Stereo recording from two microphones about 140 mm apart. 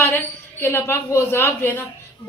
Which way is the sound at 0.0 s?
20° left (ahead or behind).